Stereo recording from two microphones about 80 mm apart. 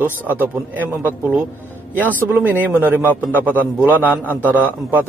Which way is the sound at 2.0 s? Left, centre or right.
Left.